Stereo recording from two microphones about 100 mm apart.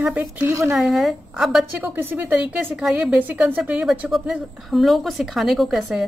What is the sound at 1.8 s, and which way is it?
Speech, 20° right (ahead or behind).